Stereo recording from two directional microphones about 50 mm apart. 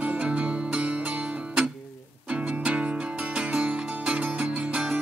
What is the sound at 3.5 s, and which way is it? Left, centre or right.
Music, right.